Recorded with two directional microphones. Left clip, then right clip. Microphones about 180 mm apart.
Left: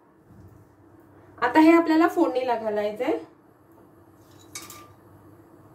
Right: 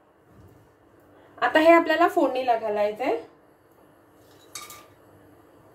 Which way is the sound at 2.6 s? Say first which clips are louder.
Right 2 dB; 35° right (ahead or behind).